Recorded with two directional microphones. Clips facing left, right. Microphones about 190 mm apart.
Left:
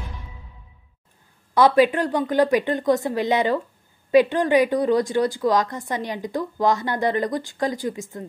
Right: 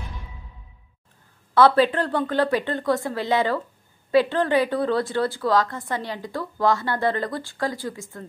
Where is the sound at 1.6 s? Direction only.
15° left (ahead or behind).